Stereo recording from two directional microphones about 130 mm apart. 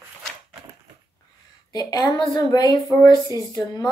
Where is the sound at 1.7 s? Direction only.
30° left (ahead or behind).